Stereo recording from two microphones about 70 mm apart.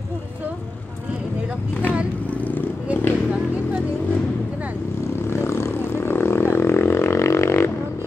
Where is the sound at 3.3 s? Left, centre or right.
Centre.